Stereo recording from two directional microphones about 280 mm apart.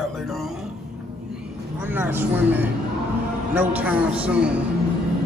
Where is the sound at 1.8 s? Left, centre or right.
Centre.